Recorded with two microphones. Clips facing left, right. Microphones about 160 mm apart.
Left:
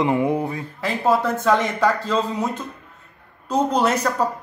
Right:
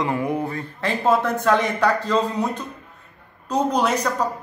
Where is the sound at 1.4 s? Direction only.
5° left (ahead or behind).